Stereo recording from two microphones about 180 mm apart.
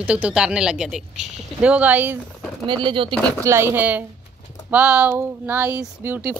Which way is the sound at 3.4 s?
15° right (ahead or behind).